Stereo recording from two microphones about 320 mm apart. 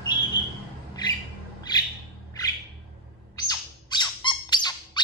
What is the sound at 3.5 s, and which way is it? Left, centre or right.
Bird, centre.